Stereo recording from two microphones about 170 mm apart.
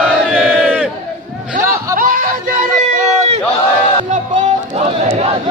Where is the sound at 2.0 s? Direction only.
50° right (ahead or behind).